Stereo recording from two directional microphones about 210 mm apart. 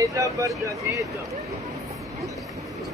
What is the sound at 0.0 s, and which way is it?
Speech, 15° right (ahead or behind).